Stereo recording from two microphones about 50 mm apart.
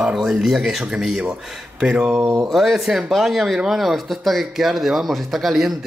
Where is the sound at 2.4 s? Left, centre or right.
Centre.